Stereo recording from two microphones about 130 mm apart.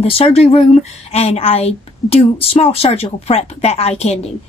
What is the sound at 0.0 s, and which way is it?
Speech, 50° left (ahead or behind).